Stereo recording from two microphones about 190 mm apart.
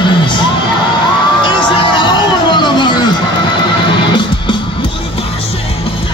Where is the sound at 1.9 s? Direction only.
25° left (ahead or behind).